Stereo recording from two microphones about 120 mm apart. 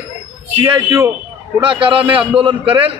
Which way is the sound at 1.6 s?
45° right (ahead or behind).